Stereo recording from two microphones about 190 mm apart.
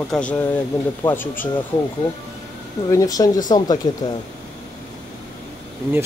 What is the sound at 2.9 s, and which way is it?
Speech, 20° left (ahead or behind).